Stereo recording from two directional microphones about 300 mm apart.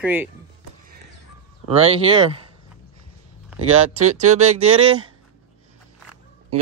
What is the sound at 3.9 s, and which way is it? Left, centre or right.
Speech, right.